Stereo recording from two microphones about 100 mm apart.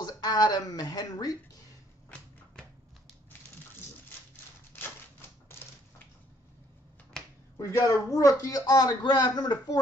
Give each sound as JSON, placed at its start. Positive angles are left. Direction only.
{"t": 0.0, "sound": "speech", "side_deg": 40}
{"t": 7.2, "sound": "finger snapping", "side_deg": 5}
{"t": 7.5, "sound": "speech", "side_deg": 30}